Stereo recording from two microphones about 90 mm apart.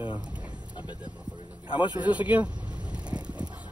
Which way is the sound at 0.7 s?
55° left (ahead or behind).